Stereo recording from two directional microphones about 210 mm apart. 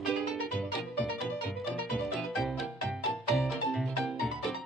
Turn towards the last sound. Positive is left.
turn(degrees=0)  # may be behind; listen again after turning